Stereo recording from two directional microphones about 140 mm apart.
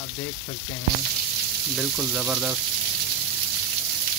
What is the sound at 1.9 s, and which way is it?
Speech, 5° right (ahead or behind).